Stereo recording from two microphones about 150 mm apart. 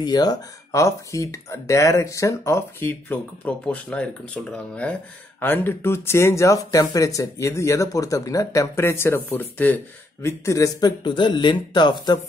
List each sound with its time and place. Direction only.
0.0 s speech: 25° left (ahead or behind)